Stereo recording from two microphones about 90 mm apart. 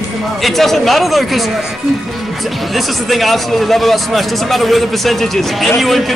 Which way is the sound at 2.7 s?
Centre (ahead or behind).